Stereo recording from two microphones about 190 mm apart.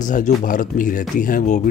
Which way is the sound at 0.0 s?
45° left (ahead or behind).